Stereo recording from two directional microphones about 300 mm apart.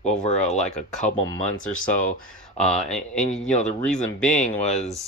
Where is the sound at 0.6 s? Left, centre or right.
Centre.